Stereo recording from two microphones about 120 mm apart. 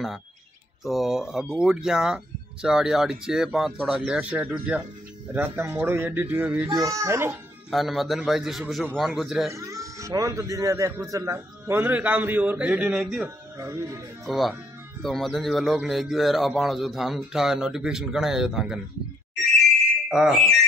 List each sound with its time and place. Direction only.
0.8 s speech: centre (ahead or behind)
6.7 s speech: 30° right (ahead or behind)
7.7 s speech: centre (ahead or behind)
9.5 s speech: 25° right (ahead or behind); by 13.3 s 5° right (ahead or behind)
13.6 s speech: 20° right (ahead or behind)
14.2 s speech: centre (ahead or behind)
20.1 s speech: 5° right (ahead or behind)